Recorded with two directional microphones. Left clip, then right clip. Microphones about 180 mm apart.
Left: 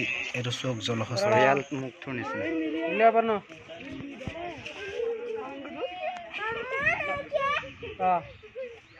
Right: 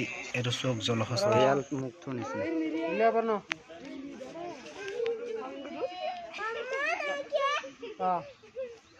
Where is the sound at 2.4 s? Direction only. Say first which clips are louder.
Left 1 dB; 35° left (ahead or behind).